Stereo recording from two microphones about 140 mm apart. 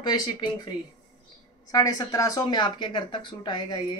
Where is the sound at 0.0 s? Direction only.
30° left (ahead or behind).